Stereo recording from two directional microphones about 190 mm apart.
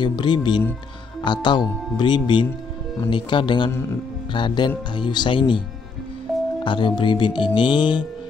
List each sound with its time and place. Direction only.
0.0 s speech: 25° left (ahead or behind)
6.6 s speech: 25° left (ahead or behind)